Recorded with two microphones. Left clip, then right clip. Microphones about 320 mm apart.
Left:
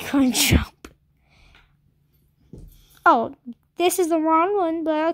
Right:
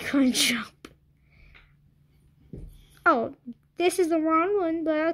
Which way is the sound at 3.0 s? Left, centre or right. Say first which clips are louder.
Left 5 dB; left.